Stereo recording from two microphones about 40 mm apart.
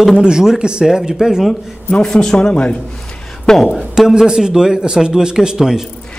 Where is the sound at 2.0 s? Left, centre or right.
Centre.